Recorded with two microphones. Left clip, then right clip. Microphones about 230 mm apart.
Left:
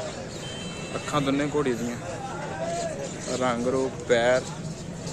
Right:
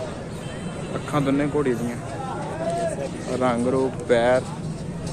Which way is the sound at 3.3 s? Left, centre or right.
Centre.